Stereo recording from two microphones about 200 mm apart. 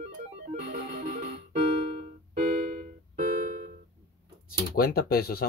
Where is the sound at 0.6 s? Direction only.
45° right (ahead or behind).